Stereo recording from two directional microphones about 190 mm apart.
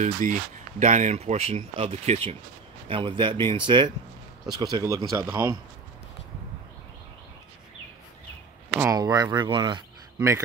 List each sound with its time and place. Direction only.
0.0 s speech: 40° right (ahead or behind); by 5.6 s 20° right (ahead or behind)
8.7 s speech: 15° right (ahead or behind)